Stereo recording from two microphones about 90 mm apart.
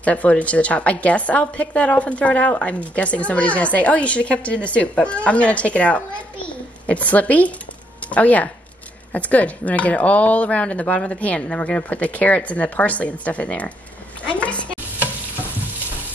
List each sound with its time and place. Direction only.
0.0 s a woman's voice: 15° left (ahead or behind)